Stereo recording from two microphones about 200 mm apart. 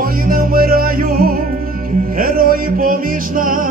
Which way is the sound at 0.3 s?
45° right (ahead or behind).